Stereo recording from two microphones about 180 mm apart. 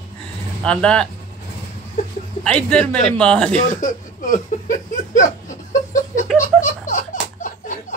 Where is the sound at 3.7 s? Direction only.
45° left (ahead or behind).